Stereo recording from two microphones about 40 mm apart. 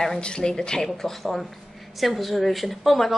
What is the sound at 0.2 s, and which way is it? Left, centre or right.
A woman's voice, left.